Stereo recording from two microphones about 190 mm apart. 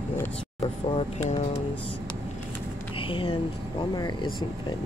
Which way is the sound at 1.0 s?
30° left (ahead or behind).